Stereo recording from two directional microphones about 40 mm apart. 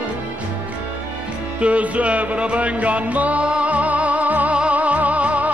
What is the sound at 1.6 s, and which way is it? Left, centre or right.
Music, right.